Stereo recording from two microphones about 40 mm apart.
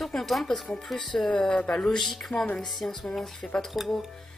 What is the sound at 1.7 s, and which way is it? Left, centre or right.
Speech, centre.